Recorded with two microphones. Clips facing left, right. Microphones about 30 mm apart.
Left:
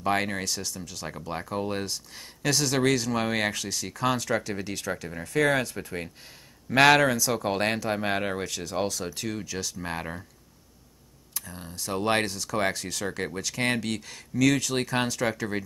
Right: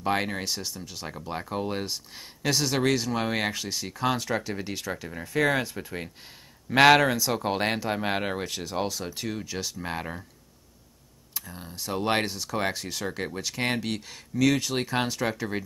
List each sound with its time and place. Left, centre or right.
0.0 s speech: centre
0.5 s speech: right
1.0 s speech: centre
3.6 s speech: centre
8.5 s speech: centre
9.8 s speech: centre
11.3 s speech: centre
12.3 s speech: centre
13.0 s speech: centre